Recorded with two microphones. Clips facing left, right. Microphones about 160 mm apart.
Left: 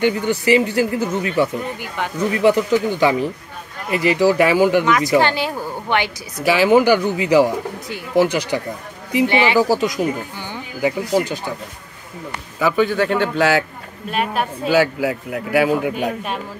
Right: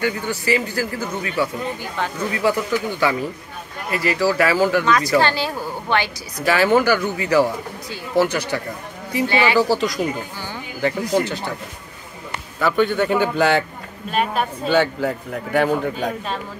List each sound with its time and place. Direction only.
0.0 s speech: 20° left (ahead or behind)
12.5 s a man's voice: 5° left (ahead or behind)